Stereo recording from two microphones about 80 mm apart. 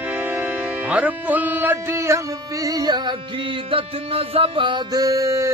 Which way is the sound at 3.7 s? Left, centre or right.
Right.